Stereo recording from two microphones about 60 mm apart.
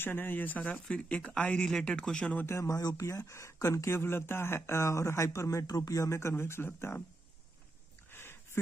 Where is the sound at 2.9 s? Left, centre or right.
Left.